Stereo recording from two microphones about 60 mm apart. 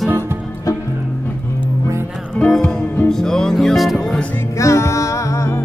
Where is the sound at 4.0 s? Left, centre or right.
Centre.